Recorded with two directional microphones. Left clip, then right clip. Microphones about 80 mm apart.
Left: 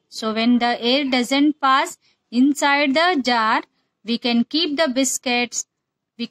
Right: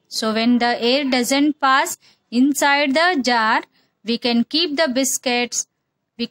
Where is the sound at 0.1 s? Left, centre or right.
Right.